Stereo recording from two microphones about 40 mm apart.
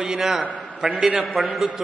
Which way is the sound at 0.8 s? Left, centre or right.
Centre.